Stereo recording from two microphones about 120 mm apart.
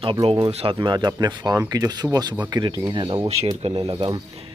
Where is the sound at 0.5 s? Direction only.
50° right (ahead or behind).